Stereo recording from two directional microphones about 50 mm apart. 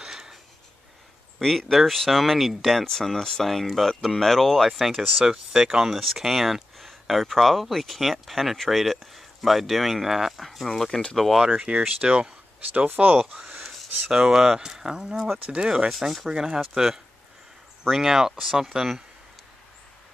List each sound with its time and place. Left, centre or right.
0.0 s a sound: centre
1.4 s speech: centre
5.3 s speech: centre
10.7 s speech: centre
11.4 s speech: centre
12.7 s speech: right
13.7 s a sound: centre
14.1 s speech: centre
15.3 s speech: right
15.9 s speech: centre
16.3 s speech: centre